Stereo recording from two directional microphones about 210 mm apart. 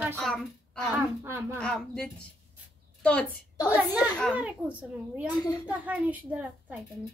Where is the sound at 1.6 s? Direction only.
5° left (ahead or behind).